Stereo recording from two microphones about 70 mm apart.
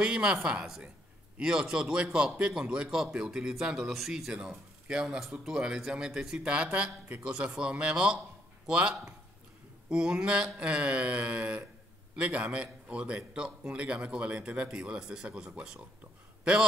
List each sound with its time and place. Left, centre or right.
0.0 s speech: centre
4.3 s speech: centre